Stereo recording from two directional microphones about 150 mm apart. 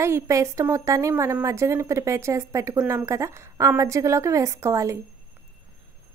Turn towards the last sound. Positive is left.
turn(degrees=-20)  # may be behind; listen again after turning